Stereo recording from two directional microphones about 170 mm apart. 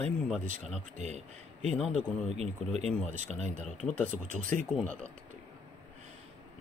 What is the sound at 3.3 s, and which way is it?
Speech, 5° left (ahead or behind).